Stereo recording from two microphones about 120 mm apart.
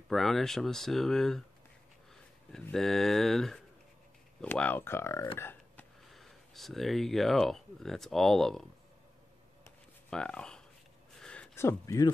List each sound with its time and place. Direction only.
0.1 s speech: centre (ahead or behind)
2.7 s speech: 5° left (ahead or behind)
4.5 s speech: 15° left (ahead or behind)
5.4 s a sound: 15° left (ahead or behind)
6.0 s speech: centre (ahead or behind)
10.0 s speech: 5° left (ahead or behind)
11.1 s a sound: 5° left (ahead or behind)
11.5 s speech: 25° left (ahead or behind)